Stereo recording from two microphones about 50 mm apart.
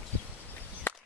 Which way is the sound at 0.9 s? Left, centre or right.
Left.